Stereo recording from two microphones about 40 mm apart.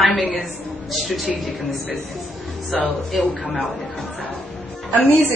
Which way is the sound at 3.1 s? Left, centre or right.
Centre.